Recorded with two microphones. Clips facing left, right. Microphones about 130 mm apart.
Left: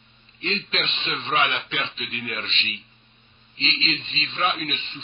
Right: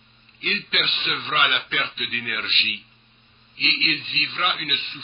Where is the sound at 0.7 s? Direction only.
35° left (ahead or behind).